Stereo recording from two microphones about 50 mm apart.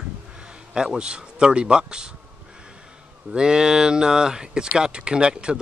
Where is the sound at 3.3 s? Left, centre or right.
Centre.